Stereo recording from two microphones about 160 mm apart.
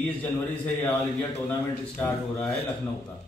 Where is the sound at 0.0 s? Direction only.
10° left (ahead or behind).